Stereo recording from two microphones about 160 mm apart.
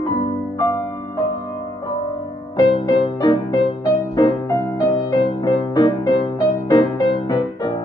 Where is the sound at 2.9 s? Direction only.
25° left (ahead or behind).